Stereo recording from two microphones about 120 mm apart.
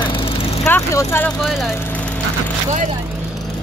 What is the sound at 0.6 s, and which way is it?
Speech, 20° left (ahead or behind).